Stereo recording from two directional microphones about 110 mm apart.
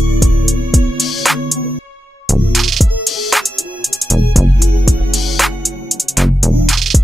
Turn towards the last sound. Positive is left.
turn(degrees=0)  # may be behind; listen again after turning